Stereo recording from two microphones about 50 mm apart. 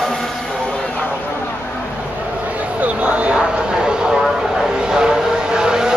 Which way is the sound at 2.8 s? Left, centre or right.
Right.